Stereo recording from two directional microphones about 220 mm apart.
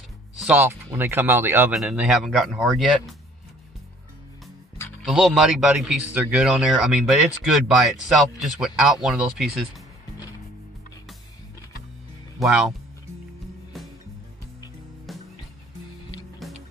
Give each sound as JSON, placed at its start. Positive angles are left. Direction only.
{"t": 0.4, "sound": "speech", "side_deg": -5}
{"t": 5.0, "sound": "speech", "side_deg": 0}
{"t": 12.4, "sound": "speech", "side_deg": 0}
{"t": 13.7, "sound": "music", "side_deg": 0}
{"t": 15.1, "sound": "music", "side_deg": 0}